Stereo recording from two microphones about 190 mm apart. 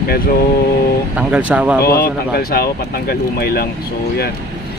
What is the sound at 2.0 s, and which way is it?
Speech, 50° left (ahead or behind).